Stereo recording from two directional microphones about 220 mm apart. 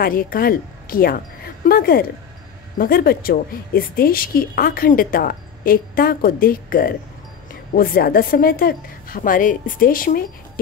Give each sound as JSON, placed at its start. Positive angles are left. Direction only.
{"t": 0.0, "sound": "a woman's voice", "side_deg": 40}